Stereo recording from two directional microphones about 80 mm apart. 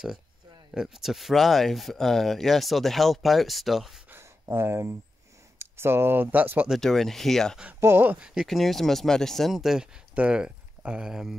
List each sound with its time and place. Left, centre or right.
0.7 s speech: centre
4.1 s a sound: right
5.6 s speech: right
6.8 s speech: centre
7.8 s speech: right
8.5 s speech: centre